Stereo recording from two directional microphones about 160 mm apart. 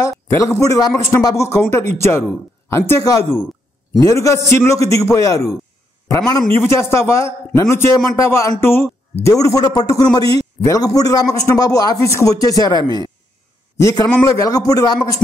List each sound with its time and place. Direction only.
0.0 s a man's voice: 20° left (ahead or behind)